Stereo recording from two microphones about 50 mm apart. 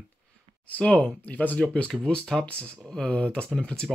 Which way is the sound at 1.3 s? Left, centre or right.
Left.